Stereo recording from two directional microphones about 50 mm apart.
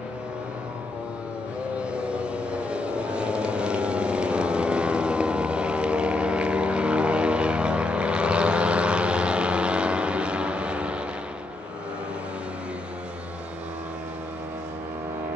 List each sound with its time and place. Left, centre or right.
1.9 s vehicle: right